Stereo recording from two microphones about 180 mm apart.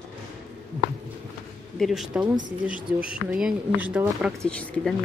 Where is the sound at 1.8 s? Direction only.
Centre (ahead or behind).